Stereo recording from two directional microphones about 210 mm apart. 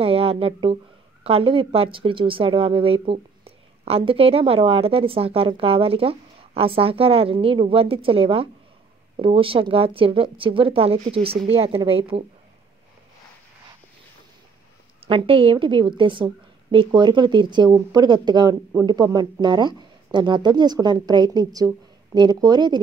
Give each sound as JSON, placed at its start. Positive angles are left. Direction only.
{"t": 0.0, "sound": "a sound", "side_deg": -25}
{"t": 1.2, "sound": "speech", "side_deg": -25}
{"t": 15.0, "sound": "speech", "side_deg": -25}